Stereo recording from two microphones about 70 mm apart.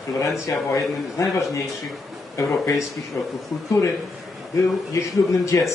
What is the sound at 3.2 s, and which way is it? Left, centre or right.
Speech, left.